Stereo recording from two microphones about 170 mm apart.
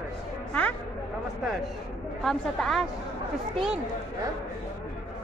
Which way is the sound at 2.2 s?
Centre (ahead or behind).